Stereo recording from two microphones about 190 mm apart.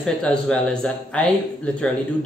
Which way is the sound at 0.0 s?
5° left (ahead or behind).